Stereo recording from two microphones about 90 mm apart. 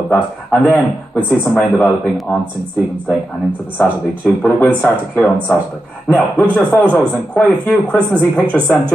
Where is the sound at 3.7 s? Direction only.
20° left (ahead or behind).